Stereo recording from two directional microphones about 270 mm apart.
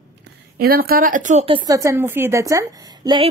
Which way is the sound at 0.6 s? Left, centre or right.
Right.